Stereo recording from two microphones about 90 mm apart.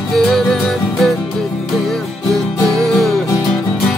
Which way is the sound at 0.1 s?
5° left (ahead or behind).